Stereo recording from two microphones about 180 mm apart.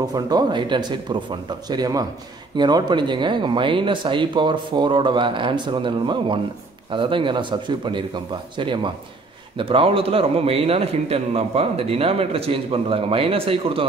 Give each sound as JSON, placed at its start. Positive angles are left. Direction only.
{"t": 0.0, "sound": "a man's voice", "side_deg": -20}